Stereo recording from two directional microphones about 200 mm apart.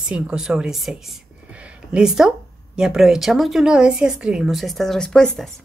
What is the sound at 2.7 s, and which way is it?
A woman's voice, 5° right (ahead or behind).